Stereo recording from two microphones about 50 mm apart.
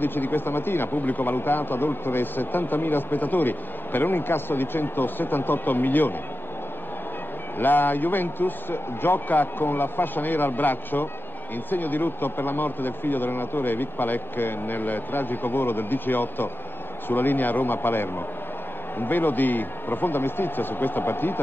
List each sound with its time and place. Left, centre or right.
0.0 s speech: left
7.5 s a man's voice: left